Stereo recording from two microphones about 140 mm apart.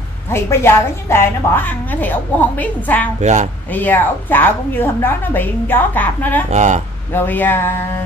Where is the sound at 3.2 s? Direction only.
55° right (ahead or behind).